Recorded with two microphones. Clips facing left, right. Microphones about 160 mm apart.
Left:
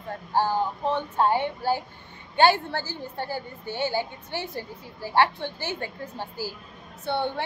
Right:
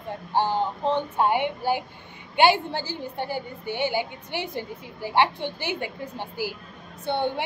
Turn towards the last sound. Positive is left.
turn(degrees=-15)  # may be behind; listen again after turning